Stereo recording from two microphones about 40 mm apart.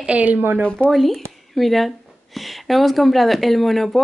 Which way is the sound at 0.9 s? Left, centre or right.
Centre.